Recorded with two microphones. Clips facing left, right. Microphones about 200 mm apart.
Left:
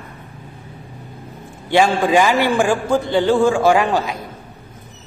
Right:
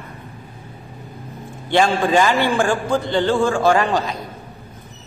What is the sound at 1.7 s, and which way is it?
A man's voice, 5° left (ahead or behind).